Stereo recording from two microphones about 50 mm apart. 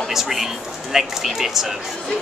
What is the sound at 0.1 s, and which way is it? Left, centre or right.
Speech, centre.